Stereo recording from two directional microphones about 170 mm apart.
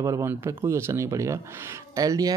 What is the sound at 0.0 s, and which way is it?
Speech, 15° right (ahead or behind).